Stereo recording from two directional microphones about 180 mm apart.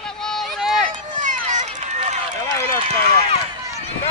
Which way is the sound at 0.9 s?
45° right (ahead or behind).